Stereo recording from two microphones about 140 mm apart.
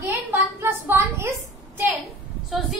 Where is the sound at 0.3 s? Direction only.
15° right (ahead or behind).